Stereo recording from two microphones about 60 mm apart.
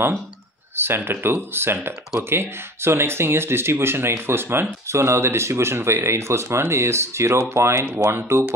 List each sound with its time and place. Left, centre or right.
0.7 s speech: right